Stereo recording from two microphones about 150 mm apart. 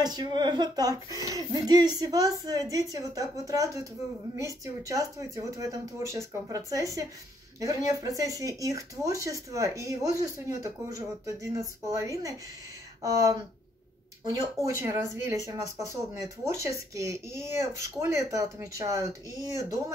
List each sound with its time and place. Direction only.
0.0 s speech: 25° right (ahead or behind)